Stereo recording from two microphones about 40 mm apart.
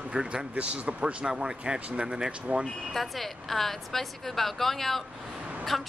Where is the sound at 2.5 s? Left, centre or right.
Right.